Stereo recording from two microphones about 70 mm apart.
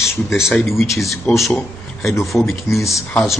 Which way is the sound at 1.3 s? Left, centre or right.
Centre.